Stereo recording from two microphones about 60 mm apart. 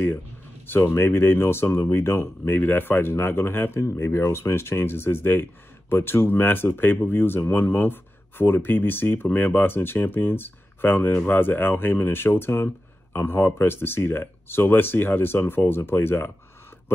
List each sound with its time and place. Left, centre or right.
0.7 s speech: left
3.8 s speech: left